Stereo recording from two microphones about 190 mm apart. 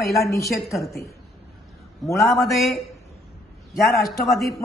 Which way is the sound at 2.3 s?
Centre (ahead or behind).